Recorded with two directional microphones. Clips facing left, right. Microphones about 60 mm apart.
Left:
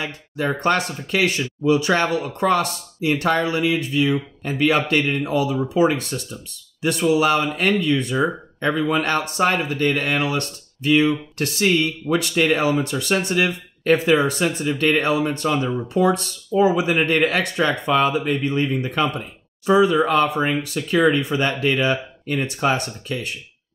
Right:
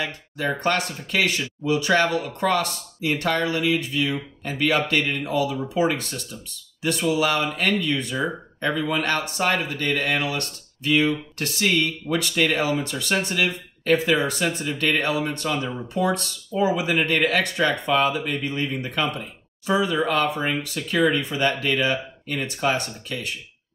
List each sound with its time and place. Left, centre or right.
0.0 s speech: left